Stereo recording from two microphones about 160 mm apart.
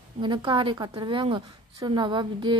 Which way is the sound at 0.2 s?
30° right (ahead or behind).